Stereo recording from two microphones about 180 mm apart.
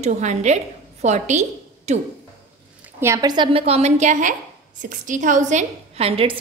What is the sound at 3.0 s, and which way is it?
A woman's voice, 20° right (ahead or behind).